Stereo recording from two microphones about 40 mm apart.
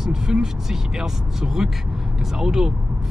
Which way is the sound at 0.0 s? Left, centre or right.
Centre.